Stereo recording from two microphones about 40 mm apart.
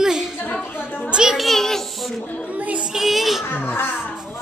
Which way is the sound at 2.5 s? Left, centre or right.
Right.